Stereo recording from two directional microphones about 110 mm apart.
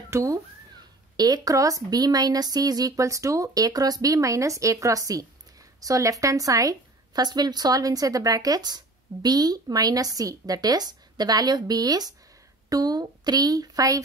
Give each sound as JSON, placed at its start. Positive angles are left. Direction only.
{"t": 0.1, "sound": "a woman's voice", "side_deg": -30}